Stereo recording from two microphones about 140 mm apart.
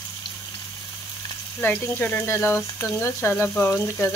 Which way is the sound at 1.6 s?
10° left (ahead or behind).